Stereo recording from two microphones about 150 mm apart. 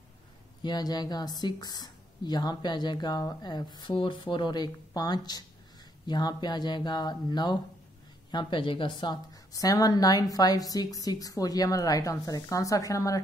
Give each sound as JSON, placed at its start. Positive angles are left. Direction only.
{"t": 0.6, "sound": "a woman's voice", "side_deg": 30}